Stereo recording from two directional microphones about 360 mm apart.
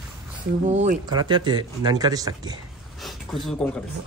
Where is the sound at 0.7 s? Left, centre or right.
Centre.